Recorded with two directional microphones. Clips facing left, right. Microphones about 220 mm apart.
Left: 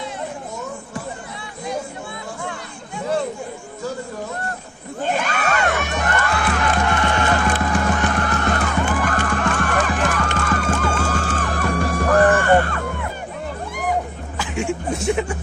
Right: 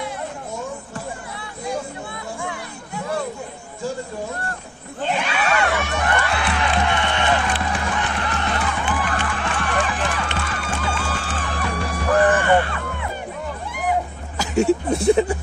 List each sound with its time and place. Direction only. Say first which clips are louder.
5.0 s crowd: left 1 dB; 45° left (ahead or behind)
14.3 s speech: right 6 dB; 40° right (ahead or behind)